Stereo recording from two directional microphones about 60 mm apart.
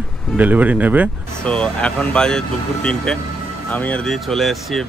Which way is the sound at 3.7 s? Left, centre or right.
Left.